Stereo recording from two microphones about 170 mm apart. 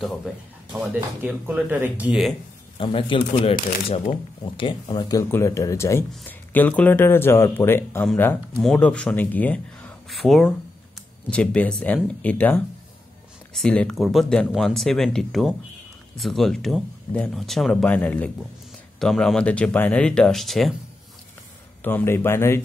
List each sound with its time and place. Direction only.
0.7 s speech: 10° right (ahead or behind)
2.8 s speech: 30° left (ahead or behind); by 8.1 s 15° left (ahead or behind)
8.5 s speech: 5° left (ahead or behind)
21.8 s speech: 15° left (ahead or behind)